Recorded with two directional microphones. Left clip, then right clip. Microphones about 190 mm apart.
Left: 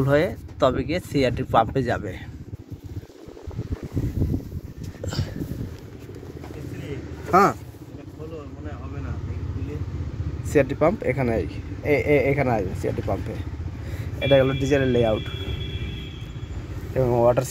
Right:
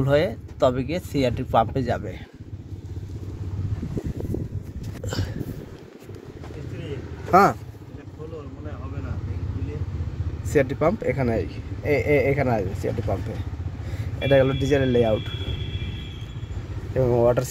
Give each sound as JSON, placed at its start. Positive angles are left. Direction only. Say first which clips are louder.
{"t": 0.0, "sound": "speech", "louder": "even", "side_deg": 0}
{"t": 5.0, "sound": "a sound", "louder": "even", "side_deg": -45}
{"t": 7.2, "sound": "speech", "louder": "right 1 dB", "side_deg": -35}
{"t": 10.5, "sound": "speech", "louder": "left 1 dB", "side_deg": -15}
{"t": 14.3, "sound": "speech", "louder": "even", "side_deg": -25}
{"t": 16.9, "sound": "speech", "louder": "even", "side_deg": -15}